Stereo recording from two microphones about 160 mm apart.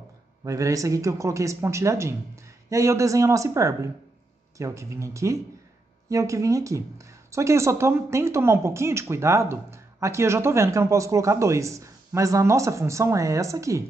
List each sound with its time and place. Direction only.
0.4 s speech: 20° right (ahead or behind)